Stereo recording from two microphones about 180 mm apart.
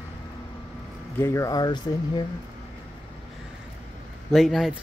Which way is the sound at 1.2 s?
15° left (ahead or behind).